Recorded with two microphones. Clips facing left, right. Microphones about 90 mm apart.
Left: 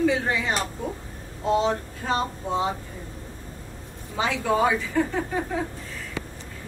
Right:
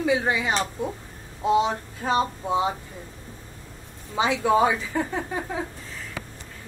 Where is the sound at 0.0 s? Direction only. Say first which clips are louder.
Even; 15° right (ahead or behind).